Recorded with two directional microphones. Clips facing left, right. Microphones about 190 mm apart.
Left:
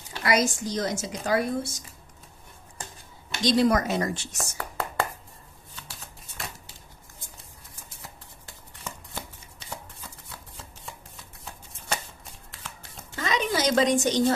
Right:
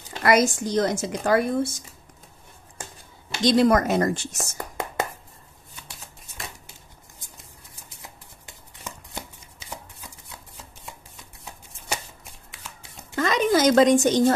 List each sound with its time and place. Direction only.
0.2 s speech: 55° right (ahead or behind)
3.4 s speech: 55° right (ahead or behind)
4.6 s whispering: 15° right (ahead or behind)
13.1 s a sound: 50° right (ahead or behind)